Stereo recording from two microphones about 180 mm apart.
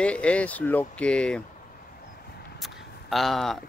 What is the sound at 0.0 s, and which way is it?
Speech, 5° left (ahead or behind).